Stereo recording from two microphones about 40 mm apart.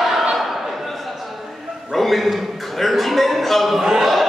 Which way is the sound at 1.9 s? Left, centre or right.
Centre.